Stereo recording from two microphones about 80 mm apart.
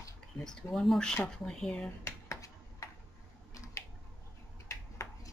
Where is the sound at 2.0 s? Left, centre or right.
Left.